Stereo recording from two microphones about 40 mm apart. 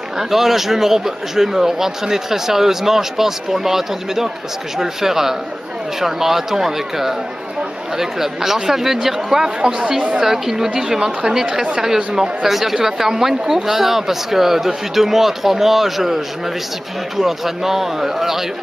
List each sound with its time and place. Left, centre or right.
0.2 s a man's voice: centre
17.2 s a man's voice: centre